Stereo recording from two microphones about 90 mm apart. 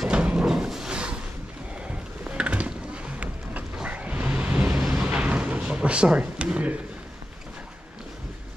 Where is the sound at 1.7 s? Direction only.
10° right (ahead or behind).